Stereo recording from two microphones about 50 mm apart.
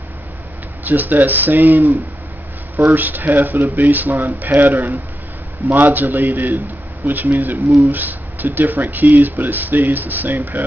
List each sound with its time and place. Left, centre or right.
0.8 s speech: right
2.9 s speech: right
7.3 s speech: right
7.9 s speech: right